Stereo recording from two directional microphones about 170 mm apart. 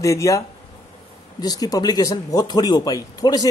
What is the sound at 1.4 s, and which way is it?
Speech, 20° left (ahead or behind).